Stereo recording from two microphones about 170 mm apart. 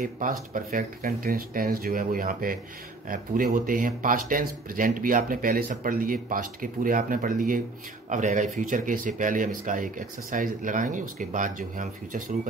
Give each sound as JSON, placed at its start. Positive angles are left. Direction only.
{"t": 0.0, "sound": "speech", "side_deg": -55}